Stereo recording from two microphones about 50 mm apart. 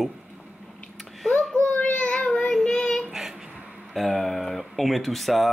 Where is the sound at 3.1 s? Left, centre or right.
Centre.